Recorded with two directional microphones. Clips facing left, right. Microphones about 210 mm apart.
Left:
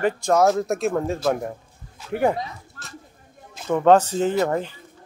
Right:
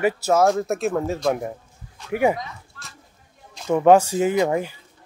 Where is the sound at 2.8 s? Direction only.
45° left (ahead or behind).